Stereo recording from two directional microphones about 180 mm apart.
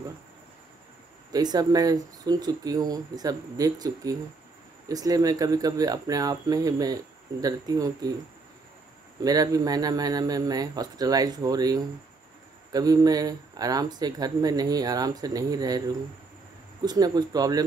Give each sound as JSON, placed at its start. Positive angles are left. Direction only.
{"t": 1.3, "sound": "speech", "side_deg": -20}
{"t": 9.2, "sound": "speech", "side_deg": -20}
{"t": 16.8, "sound": "speech", "side_deg": -20}